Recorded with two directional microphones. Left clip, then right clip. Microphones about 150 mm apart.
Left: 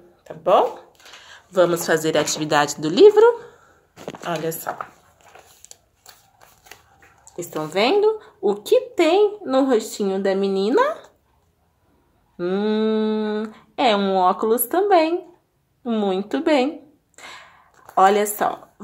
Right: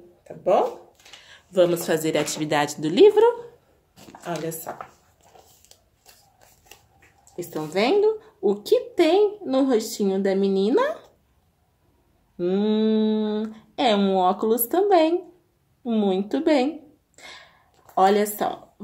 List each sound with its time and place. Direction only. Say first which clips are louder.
1.2 s a woman's voice: left 2 dB; 25° right (ahead or behind)
7.5 s a woman's voice: left 2 dB; 25° right (ahead or behind)
12.4 s a woman's voice: left 1 dB; 25° right (ahead or behind)
17.2 s a sound: left 4 dB; 25° right (ahead or behind)
18.3 s a woman's voice: left 4 dB; 25° right (ahead or behind)